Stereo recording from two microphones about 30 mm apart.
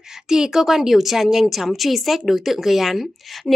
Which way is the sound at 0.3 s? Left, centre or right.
Centre.